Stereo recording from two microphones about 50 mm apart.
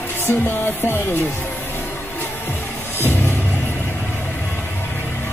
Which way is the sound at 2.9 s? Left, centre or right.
Left.